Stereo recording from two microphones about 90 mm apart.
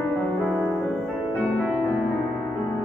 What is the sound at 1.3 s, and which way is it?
Music, 15° left (ahead or behind).